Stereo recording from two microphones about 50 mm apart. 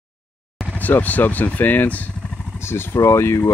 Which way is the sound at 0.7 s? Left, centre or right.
Left.